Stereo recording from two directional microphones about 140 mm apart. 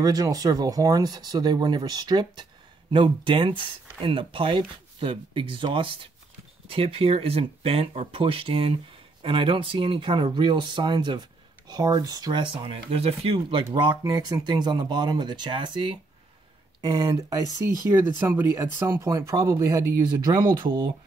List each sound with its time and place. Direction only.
0.0 s speech: 25° right (ahead or behind); by 13.7 s 45° right (ahead or behind)
13.7 s speech: 30° right (ahead or behind)
16.8 s speech: 25° right (ahead or behind)